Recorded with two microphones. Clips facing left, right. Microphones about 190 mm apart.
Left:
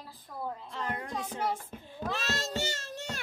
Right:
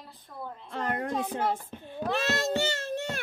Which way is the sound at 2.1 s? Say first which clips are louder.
Right 7 dB; 55° right (ahead or behind).